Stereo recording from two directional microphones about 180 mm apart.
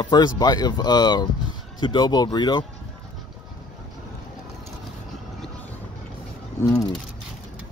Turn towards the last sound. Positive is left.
turn(degrees=20)  # may be behind; listen again after turning